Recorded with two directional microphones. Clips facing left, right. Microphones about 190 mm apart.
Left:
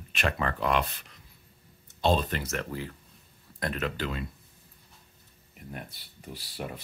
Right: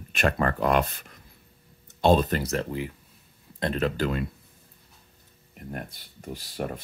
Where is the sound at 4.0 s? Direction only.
50° right (ahead or behind).